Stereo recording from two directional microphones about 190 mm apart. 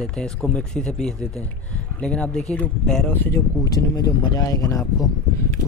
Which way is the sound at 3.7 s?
20° left (ahead or behind).